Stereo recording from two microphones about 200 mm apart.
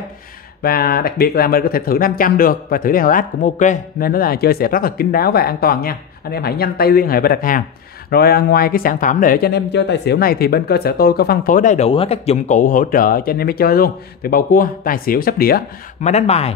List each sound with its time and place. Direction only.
0.6 s speech: 50° left (ahead or behind)
16.0 s a man's voice: 35° left (ahead or behind)